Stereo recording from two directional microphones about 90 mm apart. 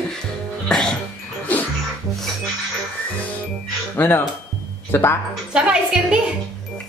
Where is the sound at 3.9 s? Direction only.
25° left (ahead or behind).